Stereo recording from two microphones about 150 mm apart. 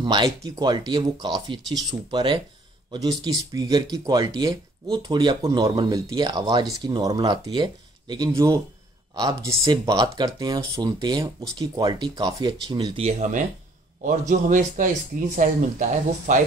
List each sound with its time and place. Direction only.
0.0 s speech: 30° right (ahead or behind)
12.9 s speech: 50° right (ahead or behind)
14.3 s speech: 60° right (ahead or behind)